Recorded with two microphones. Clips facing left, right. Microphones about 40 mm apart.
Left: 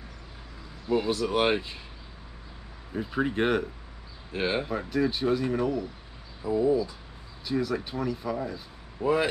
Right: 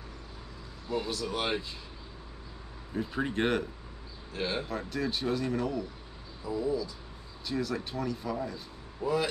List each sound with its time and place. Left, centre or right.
0.8 s speech: left
2.9 s speech: centre
4.3 s speech: left
4.6 s speech: centre
6.4 s speech: left
7.4 s speech: centre
9.0 s speech: left